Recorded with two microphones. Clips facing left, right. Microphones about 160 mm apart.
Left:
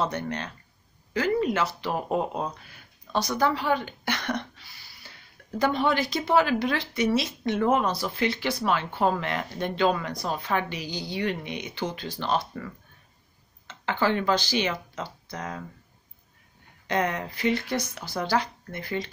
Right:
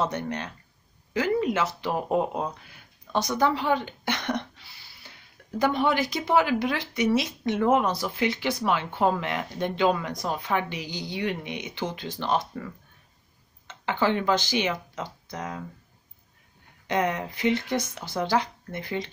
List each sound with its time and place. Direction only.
0.0 s speech: 15° right (ahead or behind)
5.6 s speech: 15° right (ahead or behind)
13.7 s speech: 15° right (ahead or behind)
16.8 s speech: 15° right (ahead or behind)